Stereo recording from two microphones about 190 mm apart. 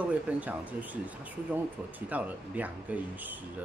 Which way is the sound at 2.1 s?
10° right (ahead or behind).